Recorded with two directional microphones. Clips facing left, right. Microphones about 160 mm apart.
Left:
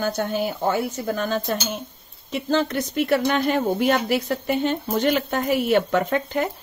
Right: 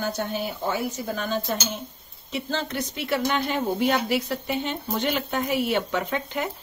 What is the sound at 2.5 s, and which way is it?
Speech, 45° left (ahead or behind).